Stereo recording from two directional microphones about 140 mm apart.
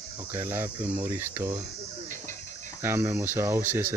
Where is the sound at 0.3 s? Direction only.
15° right (ahead or behind).